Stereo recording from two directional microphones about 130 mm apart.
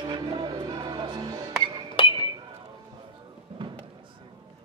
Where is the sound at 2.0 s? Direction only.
40° left (ahead or behind).